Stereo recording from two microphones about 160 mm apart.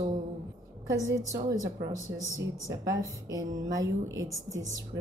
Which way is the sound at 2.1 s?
90° right.